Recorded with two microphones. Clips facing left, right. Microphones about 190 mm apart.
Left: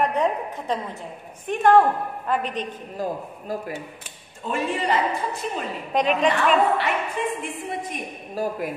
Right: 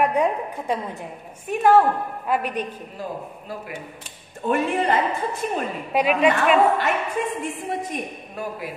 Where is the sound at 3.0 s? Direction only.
40° left (ahead or behind).